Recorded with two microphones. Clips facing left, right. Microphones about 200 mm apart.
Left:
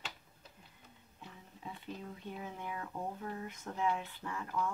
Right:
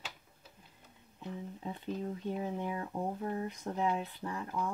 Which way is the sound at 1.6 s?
35° right (ahead or behind).